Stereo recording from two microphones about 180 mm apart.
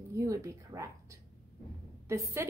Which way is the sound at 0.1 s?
15° right (ahead or behind).